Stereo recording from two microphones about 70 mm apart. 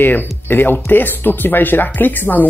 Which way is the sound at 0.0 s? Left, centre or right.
Left.